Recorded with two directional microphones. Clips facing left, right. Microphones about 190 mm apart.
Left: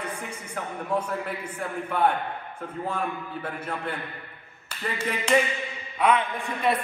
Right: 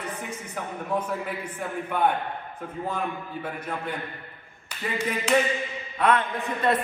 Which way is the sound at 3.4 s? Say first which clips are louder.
Right 1 dB; 10° right (ahead or behind).